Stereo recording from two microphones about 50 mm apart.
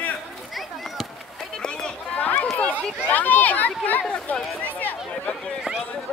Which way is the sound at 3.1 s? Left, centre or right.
Left.